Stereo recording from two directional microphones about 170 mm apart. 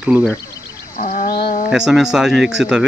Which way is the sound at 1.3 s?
65° left (ahead or behind).